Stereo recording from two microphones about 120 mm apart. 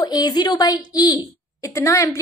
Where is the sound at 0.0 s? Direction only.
35° left (ahead or behind).